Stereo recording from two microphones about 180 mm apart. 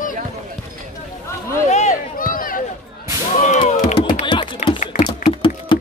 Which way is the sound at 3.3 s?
40° left (ahead or behind).